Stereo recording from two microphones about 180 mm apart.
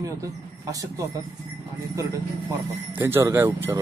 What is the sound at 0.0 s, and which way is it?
Speech, 20° right (ahead or behind).